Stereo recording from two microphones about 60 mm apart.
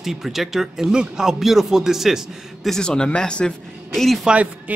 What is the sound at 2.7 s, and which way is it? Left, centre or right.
A man's voice, centre.